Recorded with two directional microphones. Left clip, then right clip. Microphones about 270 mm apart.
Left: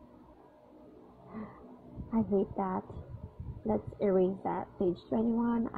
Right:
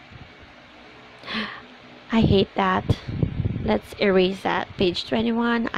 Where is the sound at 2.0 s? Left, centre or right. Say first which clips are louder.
Right 11 dB; right.